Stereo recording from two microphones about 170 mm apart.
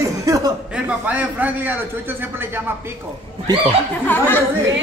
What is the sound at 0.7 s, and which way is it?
A man's voice, 5° right (ahead or behind).